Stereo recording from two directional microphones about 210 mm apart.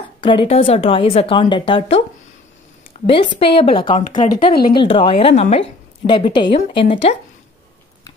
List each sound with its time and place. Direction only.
0.2 s a woman's voice: 25° left (ahead or behind)